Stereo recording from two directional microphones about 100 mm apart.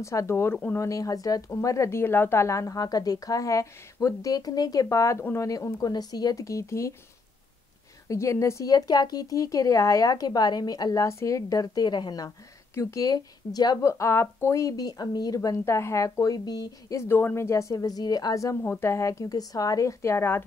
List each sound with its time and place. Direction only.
0.0 s speech: 30° left (ahead or behind)
0.7 s speech: 35° left (ahead or behind)
8.1 s speech: 30° left (ahead or behind)
12.7 s speech: 35° left (ahead or behind)
17.1 s speech: 25° left (ahead or behind)